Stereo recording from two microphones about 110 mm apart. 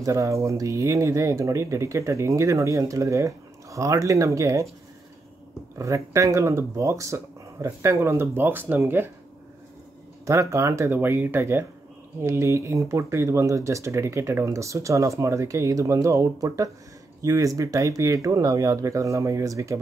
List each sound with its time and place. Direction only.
0.0 s speech: 30° right (ahead or behind)
5.8 s speech: 30° right (ahead or behind)
10.2 s speech: 30° right (ahead or behind)